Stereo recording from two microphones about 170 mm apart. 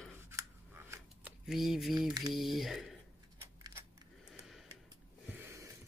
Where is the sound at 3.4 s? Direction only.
15° right (ahead or behind).